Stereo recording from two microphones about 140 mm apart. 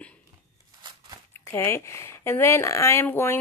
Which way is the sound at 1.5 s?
20° left (ahead or behind).